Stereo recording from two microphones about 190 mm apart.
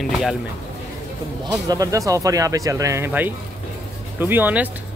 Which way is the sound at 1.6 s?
20° right (ahead or behind).